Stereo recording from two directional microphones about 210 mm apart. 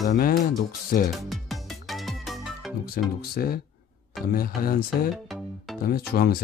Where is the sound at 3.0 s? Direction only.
45° left (ahead or behind).